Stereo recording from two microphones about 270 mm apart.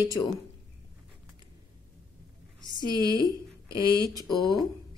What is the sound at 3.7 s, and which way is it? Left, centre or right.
Speech, centre.